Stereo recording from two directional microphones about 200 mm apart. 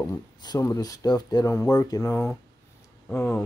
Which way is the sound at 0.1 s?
20° left (ahead or behind).